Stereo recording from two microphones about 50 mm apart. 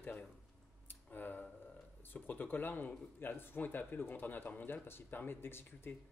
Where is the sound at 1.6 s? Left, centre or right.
Left.